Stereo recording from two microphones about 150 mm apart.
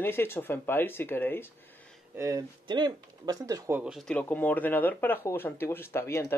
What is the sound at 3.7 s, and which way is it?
Speech, centre (ahead or behind).